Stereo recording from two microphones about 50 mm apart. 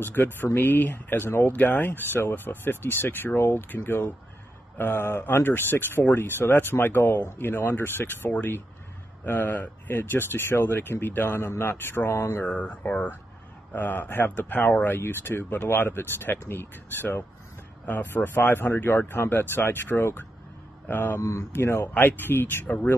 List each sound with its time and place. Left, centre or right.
0.0 s speech: left
11.6 s speech: left
12.1 s speech: left
12.4 s speech: left
14.9 s speech: left
21.2 s speech: left
21.9 s speech: left